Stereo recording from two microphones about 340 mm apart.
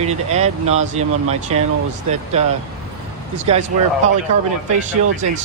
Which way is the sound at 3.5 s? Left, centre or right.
Centre.